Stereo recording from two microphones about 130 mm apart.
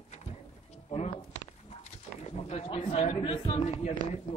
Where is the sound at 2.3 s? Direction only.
55° left (ahead or behind).